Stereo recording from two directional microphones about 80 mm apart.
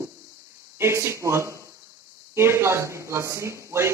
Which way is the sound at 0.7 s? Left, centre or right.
Right.